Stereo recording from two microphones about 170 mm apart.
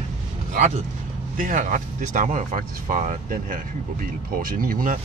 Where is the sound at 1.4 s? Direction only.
50° right (ahead or behind).